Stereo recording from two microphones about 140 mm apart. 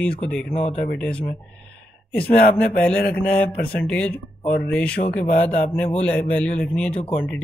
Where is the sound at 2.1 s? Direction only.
10° left (ahead or behind).